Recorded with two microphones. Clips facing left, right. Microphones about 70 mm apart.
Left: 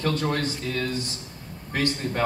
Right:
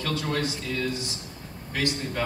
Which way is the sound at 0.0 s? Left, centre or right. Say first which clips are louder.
Left 3 dB; left.